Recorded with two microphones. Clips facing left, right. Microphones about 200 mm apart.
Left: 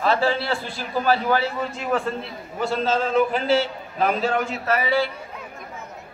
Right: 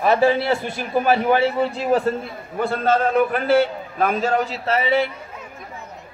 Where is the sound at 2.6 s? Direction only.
55° right (ahead or behind); by 5.1 s 25° right (ahead or behind).